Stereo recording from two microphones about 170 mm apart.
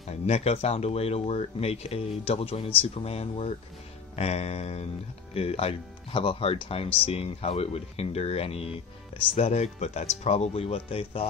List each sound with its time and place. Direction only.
0.3 s speech: 40° left (ahead or behind)